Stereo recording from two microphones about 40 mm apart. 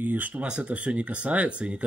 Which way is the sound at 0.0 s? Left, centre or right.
Right.